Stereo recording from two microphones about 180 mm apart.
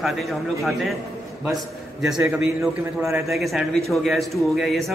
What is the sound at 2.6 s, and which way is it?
Speech, 15° right (ahead or behind).